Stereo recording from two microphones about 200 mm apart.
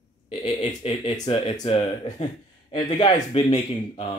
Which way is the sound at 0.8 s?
30° left (ahead or behind).